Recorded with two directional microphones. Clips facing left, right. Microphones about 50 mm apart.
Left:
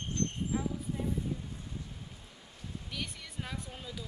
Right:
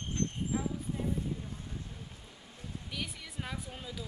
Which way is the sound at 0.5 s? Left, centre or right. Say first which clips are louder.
Even; centre.